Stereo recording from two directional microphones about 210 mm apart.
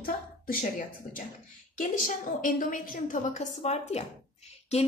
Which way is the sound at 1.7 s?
40° left (ahead or behind).